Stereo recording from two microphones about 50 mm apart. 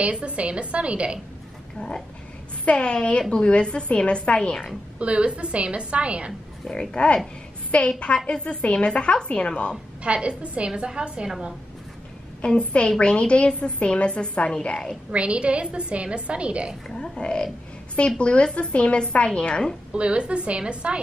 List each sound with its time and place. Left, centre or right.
0.0 s a woman's voice: right
1.8 s a woman's voice: centre
4.4 s a woman's voice: centre
4.9 s a woman's voice: right
6.7 s a woman's voice: centre
10.0 s a woman's voice: right
12.4 s a woman's voice: left
15.0 s a woman's voice: right
16.9 s a woman's voice: centre
19.9 s a woman's voice: right